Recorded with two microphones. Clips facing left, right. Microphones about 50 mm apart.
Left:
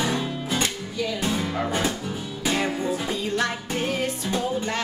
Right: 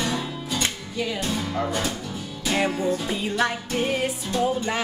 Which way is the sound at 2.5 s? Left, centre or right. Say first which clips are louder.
Right 3 dB; centre.